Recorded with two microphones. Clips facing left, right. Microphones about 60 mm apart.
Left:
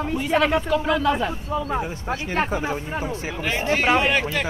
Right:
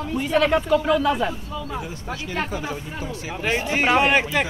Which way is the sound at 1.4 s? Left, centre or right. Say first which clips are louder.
Left 5 dB; left.